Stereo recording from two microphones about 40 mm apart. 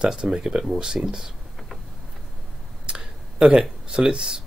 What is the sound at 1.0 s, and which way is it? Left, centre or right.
Speech, right.